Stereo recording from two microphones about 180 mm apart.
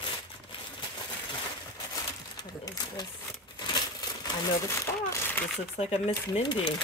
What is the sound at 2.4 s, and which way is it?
Speech, 20° left (ahead or behind).